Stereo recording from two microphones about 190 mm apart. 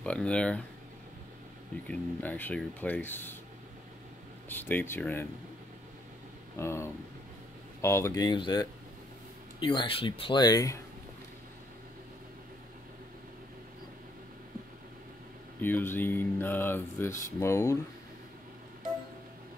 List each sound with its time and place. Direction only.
0.0 s speech: 5° left (ahead or behind)
1.9 s speech: 10° left (ahead or behind)
4.5 s speech: 10° left (ahead or behind)
6.6 s speech: 15° left (ahead or behind)
15.6 s speech: 10° left (ahead or behind)